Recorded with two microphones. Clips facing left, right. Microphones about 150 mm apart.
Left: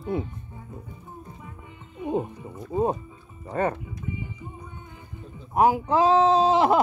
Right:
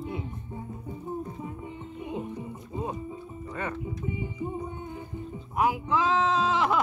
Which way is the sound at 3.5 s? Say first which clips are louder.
Left 9 dB; 40° left (ahead or behind).